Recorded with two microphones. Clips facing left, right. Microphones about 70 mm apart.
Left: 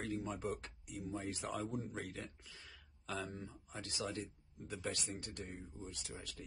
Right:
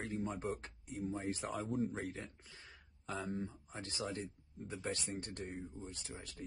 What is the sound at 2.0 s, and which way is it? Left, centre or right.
Speech, right.